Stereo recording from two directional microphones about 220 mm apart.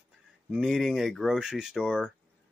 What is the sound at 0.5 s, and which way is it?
Speech, centre (ahead or behind).